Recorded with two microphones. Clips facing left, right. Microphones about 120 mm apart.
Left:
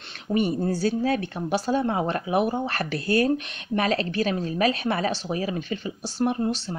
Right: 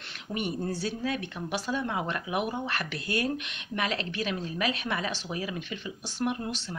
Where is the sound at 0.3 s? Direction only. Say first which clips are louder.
Left 8 dB; 35° left (ahead or behind).